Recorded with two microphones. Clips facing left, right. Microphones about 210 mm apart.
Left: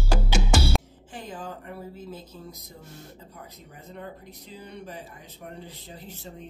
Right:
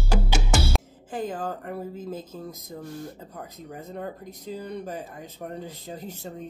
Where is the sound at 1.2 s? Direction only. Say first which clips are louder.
Right 6 dB; 50° right (ahead or behind).